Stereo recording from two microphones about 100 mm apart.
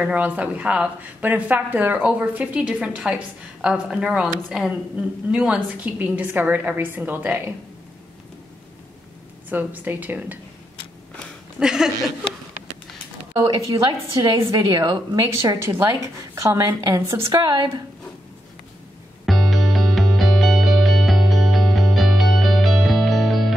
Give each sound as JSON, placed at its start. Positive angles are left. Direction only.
{"t": 0.0, "sound": "speech", "side_deg": -15}
{"t": 9.5, "sound": "speech", "side_deg": -20}
{"t": 11.6, "sound": "speech", "side_deg": -5}
{"t": 13.3, "sound": "a woman's voice", "side_deg": -45}
{"t": 15.1, "sound": "a woman's voice", "side_deg": -30}
{"t": 19.2, "sound": "music", "side_deg": 0}